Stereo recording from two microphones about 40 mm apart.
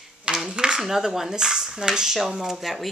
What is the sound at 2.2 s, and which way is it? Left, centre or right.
Speech, centre.